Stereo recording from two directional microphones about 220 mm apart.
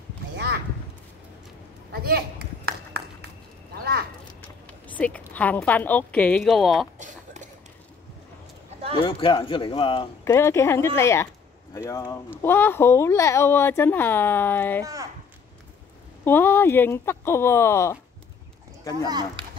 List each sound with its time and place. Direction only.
1.9 s a sound: 45° right (ahead or behind)
4.6 s a woman's voice: 5° left (ahead or behind)
9.0 s speech: 25° left (ahead or behind)
16.3 s speech: 10° left (ahead or behind)
19.0 s speech: 20° right (ahead or behind)